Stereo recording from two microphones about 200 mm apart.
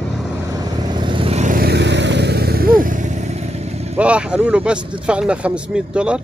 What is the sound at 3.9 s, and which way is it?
Speech, 5° right (ahead or behind).